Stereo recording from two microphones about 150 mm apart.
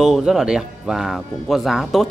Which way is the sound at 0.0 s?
Centre (ahead or behind).